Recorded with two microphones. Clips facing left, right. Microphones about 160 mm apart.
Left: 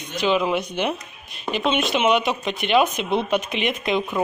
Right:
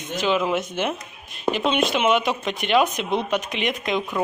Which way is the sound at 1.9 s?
20° left (ahead or behind).